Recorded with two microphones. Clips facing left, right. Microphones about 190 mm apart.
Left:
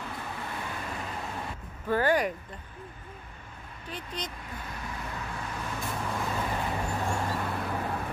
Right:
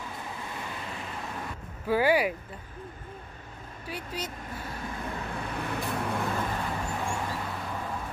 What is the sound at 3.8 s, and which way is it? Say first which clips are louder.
Speech: right 2 dB; 10° right (ahead or behind).